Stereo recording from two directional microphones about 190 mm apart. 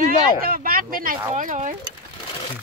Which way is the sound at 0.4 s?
50° right (ahead or behind).